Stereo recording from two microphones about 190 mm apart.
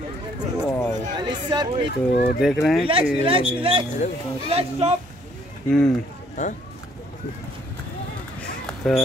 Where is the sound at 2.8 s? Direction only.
30° right (ahead or behind).